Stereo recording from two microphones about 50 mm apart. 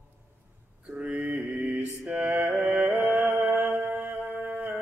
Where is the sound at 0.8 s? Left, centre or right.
Right.